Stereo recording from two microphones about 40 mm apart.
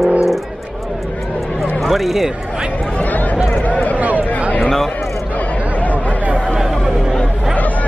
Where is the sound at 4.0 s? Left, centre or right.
Right.